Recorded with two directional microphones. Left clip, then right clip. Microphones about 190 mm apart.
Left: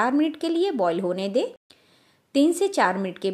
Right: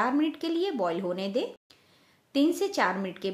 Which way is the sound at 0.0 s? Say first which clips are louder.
Left 4 dB; 35° left (ahead or behind).